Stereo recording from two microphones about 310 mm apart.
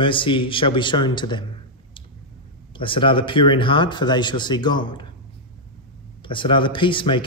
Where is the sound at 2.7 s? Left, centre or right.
Centre.